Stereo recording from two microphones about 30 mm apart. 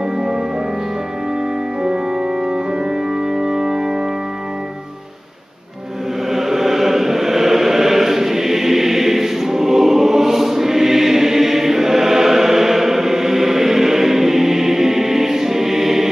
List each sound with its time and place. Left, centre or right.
3.3 s organ: right
6.3 s chant: centre